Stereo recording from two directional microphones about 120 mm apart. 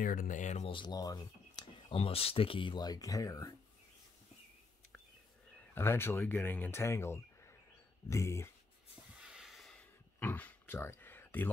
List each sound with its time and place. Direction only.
0.3 s speech: 85° left
0.7 s speech: 40° left (ahead or behind)
1.9 s speech: 50° left (ahead or behind); by 3.5 s 30° left (ahead or behind)
5.8 s speech: 20° left (ahead or behind)
9.1 s a sound: 5° right (ahead or behind)
10.1 s a sound: 15° left (ahead or behind)